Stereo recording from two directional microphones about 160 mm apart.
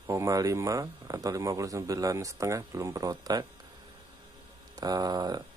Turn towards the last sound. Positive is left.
turn(degrees=-25)  # may be behind; listen again after turning